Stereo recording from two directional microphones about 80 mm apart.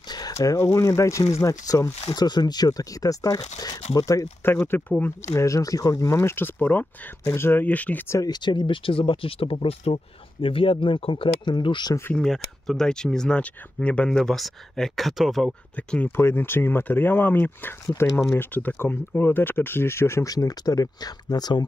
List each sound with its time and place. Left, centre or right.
0.3 s a sound: left
0.6 s speech: left
4.4 s speech: left
5.4 s speech: left
8.3 s speech: left
12.2 s speech: centre
15.7 s speech: centre
16.2 s speech: left
20.2 s speech: left